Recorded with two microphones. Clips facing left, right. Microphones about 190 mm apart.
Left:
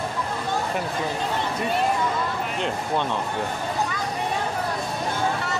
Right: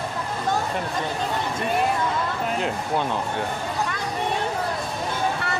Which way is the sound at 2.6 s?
5° right (ahead or behind).